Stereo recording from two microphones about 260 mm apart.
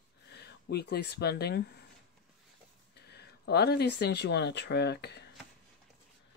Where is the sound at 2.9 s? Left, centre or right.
Left.